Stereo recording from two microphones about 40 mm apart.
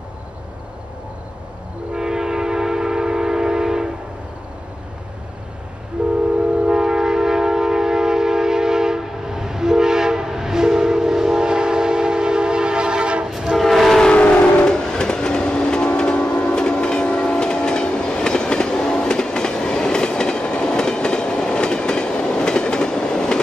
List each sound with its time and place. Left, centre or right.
2.0 s train: centre
6.0 s train: right
6.7 s train: centre
13.6 s train: centre
14.1 s vehicle: left
14.6 s train: centre